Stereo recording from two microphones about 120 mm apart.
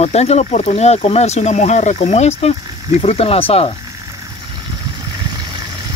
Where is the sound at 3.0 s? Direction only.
55° left (ahead or behind).